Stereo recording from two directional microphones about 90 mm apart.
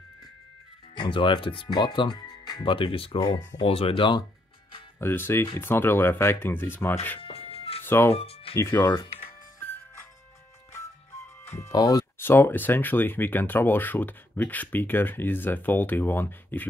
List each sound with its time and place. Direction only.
0.9 s speech: 65° left (ahead or behind)
1.7 s speech: 55° left (ahead or behind)
2.6 s speech: 70° left (ahead or behind); by 3.2 s 90° left
3.2 s speech: 45° left (ahead or behind)
3.6 s speech: 90° left; by 4.3 s 65° left (ahead or behind)
4.9 s speech: 25° left (ahead or behind)
7.2 s music: 90° left
7.8 s music: 25° left (ahead or behind)
8.1 s speech: 90° left
8.8 s speech: 30° left (ahead or behind)
11.4 s music: 30° left (ahead or behind)
11.7 s speech: 45° left (ahead or behind)
12.2 s speech: 25° left (ahead or behind)